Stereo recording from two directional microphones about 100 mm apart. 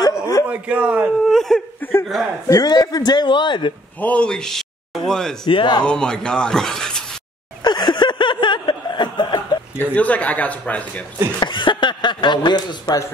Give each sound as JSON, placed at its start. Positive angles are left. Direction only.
{"t": 0.5, "sound": "speech", "side_deg": -15}
{"t": 1.3, "sound": "whimper", "side_deg": 5}
{"t": 1.8, "sound": "chuckle", "side_deg": 25}
{"t": 2.4, "sound": "a man's voice", "side_deg": 30}
{"t": 2.7, "sound": "speech", "side_deg": 40}
{"t": 4.0, "sound": "speech", "side_deg": 10}
{"t": 5.5, "sound": "speech", "side_deg": 55}
{"t": 5.9, "sound": "a man's voice", "side_deg": 10}
{"t": 7.6, "sound": "chuckle", "side_deg": 50}
{"t": 9.8, "sound": "a man's voice", "side_deg": 15}
{"t": 11.3, "sound": "speech", "side_deg": 50}